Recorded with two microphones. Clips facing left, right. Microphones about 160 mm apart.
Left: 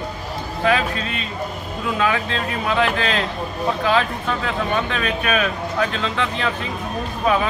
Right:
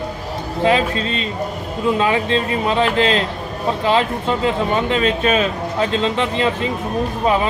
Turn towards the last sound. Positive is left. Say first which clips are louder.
# right 3 dB
turn(degrees=-25)  # may be behind; listen again after turning